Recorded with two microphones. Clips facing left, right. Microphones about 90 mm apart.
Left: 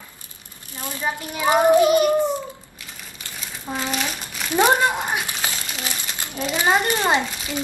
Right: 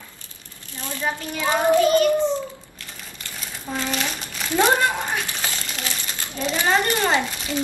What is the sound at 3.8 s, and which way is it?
Speech, 5° left (ahead or behind).